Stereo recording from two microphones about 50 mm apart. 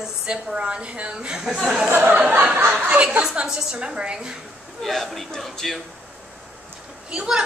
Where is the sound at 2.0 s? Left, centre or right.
Right.